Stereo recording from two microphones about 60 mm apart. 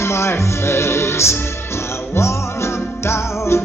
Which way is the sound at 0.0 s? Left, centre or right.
Left.